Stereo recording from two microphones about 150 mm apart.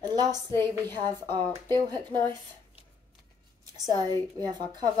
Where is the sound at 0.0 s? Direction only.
25° right (ahead or behind).